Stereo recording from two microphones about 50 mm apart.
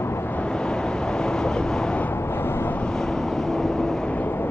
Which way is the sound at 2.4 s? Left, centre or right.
Left.